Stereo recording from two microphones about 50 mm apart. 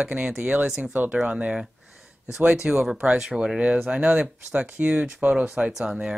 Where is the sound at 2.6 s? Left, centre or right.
Centre.